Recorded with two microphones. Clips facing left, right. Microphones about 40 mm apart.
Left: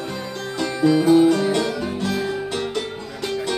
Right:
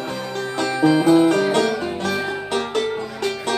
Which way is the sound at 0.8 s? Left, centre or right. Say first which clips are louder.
Even; centre.